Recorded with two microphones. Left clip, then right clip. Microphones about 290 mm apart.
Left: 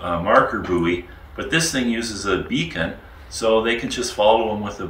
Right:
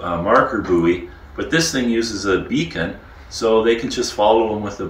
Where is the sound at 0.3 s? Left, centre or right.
Centre.